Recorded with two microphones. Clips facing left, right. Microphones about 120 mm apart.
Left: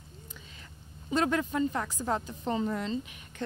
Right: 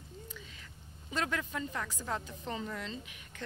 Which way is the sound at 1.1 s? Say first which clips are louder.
Left 8 dB; 30° left (ahead or behind).